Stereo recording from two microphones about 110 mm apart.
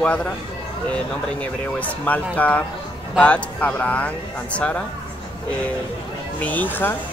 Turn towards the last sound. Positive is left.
turn(degrees=15)  # may be behind; listen again after turning